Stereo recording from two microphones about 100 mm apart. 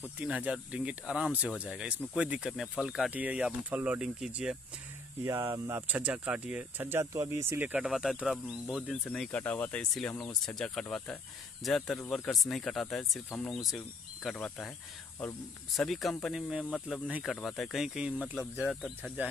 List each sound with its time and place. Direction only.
0.2 s speech: 15° right (ahead or behind)
3.1 s speech: 15° right (ahead or behind)
5.2 s speech: 30° right (ahead or behind)
5.9 s speech: 15° right (ahead or behind)
6.9 s speech: 25° right (ahead or behind)
7.6 s speech: 10° right (ahead or behind)
9.1 s speech: 10° left (ahead or behind)
15.7 s speech: centre (ahead or behind)